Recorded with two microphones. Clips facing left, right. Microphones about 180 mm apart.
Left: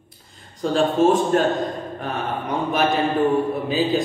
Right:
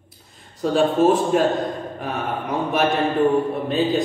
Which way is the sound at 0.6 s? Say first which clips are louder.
Right 1 dB; 5° right (ahead or behind).